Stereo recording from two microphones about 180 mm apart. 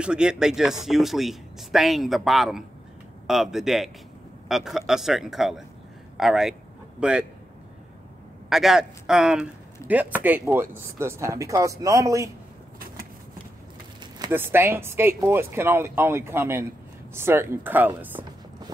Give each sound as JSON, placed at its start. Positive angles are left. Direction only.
{"t": 0.0, "sound": "speech", "side_deg": -5}
{"t": 8.5, "sound": "speech", "side_deg": 0}
{"t": 14.3, "sound": "speech", "side_deg": -10}